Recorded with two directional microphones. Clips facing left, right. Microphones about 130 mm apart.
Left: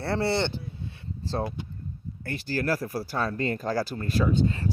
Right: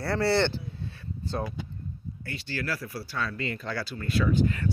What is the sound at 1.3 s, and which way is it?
Speech, 30° left (ahead or behind).